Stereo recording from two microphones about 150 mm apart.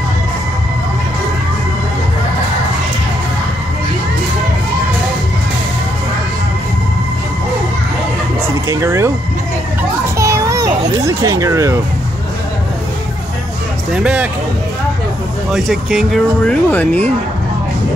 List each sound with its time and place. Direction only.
8.6 s speech: 20° right (ahead or behind)
10.1 s children playing: 20° right (ahead or behind)
13.9 s speech: 5° right (ahead or behind)
15.5 s speech: centre (ahead or behind)